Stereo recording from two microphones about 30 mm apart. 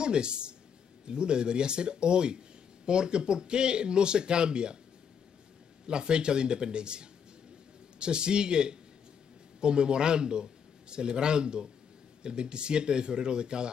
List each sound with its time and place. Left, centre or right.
0.0 s speech: right
5.9 s a man's voice: right